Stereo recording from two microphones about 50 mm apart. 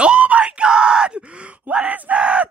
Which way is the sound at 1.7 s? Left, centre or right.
Right.